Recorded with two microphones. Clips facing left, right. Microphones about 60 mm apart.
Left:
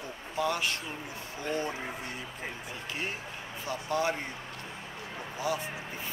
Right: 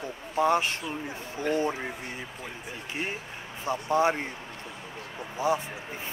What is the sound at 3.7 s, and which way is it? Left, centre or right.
Speech, right.